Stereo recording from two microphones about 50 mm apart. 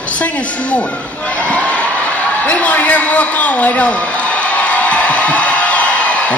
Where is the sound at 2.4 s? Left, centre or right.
Left.